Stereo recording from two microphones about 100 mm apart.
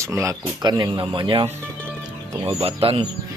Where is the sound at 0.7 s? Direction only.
45° right (ahead or behind).